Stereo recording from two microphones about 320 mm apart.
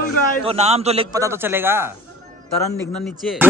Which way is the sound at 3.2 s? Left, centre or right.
Centre.